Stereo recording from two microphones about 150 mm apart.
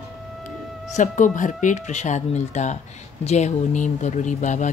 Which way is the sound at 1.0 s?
60° left (ahead or behind).